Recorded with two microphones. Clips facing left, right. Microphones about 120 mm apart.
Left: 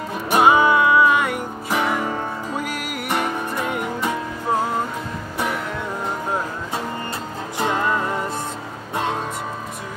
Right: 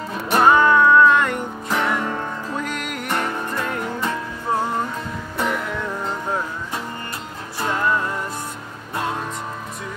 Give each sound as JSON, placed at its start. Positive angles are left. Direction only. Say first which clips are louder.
{"t": 0.3, "sound": "music", "louder": "even", "side_deg": 10}
{"t": 7.5, "sound": "music", "louder": "even", "side_deg": 20}